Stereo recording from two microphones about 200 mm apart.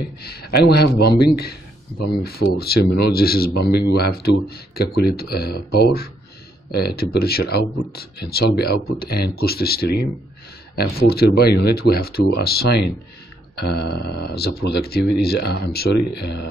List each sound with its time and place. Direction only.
0.2 s speech: 50° left (ahead or behind)